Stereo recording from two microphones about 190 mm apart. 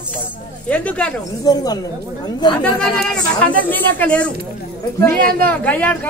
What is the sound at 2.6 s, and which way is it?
Speech, 5° left (ahead or behind).